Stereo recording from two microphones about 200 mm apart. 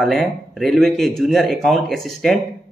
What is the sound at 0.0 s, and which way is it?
Speech, centre (ahead or behind).